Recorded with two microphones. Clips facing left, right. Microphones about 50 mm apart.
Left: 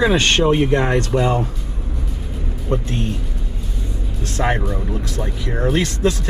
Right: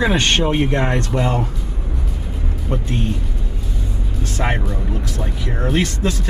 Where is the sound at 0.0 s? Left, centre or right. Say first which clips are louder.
Left 2 dB; centre.